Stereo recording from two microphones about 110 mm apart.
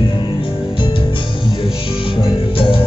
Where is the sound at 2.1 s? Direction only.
55° left (ahead or behind).